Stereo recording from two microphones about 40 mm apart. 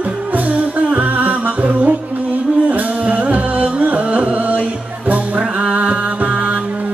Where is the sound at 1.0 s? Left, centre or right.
Right.